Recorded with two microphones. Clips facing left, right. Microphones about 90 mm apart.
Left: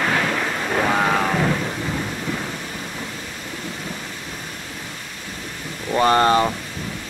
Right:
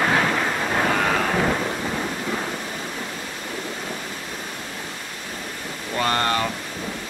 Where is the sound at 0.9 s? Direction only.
15° left (ahead or behind).